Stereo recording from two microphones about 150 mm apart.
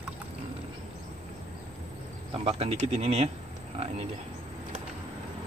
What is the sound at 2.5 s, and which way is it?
Speech, 40° right (ahead or behind).